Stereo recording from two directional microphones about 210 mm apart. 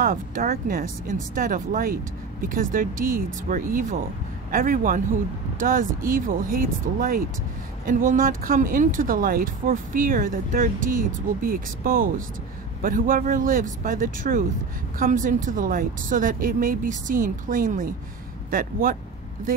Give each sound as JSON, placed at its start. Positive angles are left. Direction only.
{"t": 0.0, "sound": "speech", "side_deg": -40}